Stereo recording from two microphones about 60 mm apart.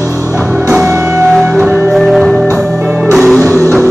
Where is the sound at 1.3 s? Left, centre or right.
Centre.